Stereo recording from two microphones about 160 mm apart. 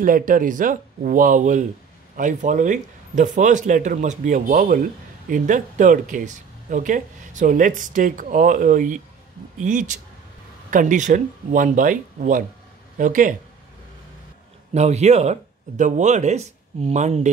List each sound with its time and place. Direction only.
0.0 s speech: 60° right (ahead or behind)
14.7 s speech: 45° right (ahead or behind)